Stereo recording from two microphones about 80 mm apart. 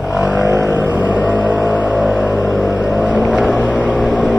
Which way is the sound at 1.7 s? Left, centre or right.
Centre.